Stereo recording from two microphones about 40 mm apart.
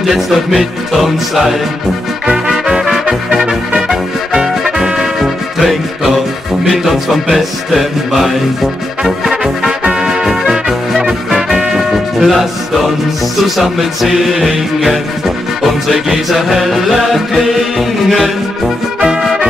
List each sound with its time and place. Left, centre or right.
0.0 s music: centre
2.2 s music: centre
5.2 s music: centre
9.0 s brass instrument: centre
9.8 s music: centre